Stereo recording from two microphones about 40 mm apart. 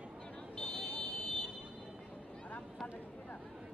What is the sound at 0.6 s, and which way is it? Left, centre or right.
Vehicle, centre.